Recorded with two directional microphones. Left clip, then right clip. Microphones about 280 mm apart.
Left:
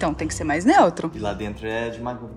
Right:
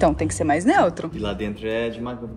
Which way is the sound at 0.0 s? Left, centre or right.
Centre.